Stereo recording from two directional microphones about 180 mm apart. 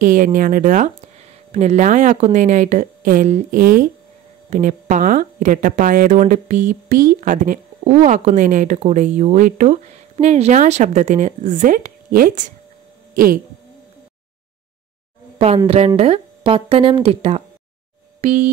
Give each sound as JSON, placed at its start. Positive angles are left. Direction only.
{"t": 0.0, "sound": "speech", "side_deg": -50}
{"t": 15.3, "sound": "speech", "side_deg": -30}
{"t": 18.2, "sound": "a sound", "side_deg": -40}